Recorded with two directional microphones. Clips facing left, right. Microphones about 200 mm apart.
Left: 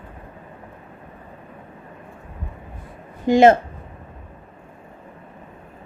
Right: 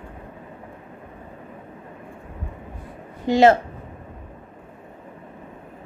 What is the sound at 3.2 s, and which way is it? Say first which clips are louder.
Speech: left 2 dB; 15° left (ahead or behind).